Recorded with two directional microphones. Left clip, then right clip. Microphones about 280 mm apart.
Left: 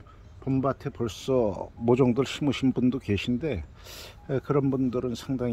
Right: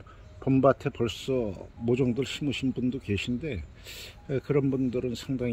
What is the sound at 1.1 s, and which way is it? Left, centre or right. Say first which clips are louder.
Speech: left 5 dB; centre.